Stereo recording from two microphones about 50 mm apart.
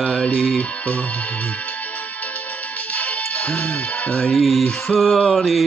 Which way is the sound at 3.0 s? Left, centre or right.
Left.